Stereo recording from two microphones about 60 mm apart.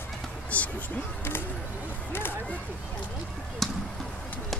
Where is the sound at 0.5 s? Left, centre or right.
Left.